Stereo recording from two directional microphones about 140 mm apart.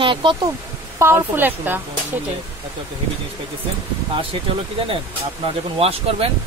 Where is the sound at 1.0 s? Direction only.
20° right (ahead or behind).